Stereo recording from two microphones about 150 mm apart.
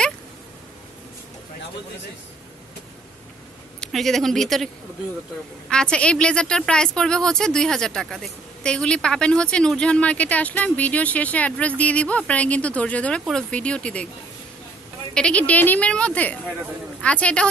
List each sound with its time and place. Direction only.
3.8 s speech: centre (ahead or behind)
5.7 s a woman's voice: 5° left (ahead or behind)
15.1 s a woman's voice: 10° left (ahead or behind)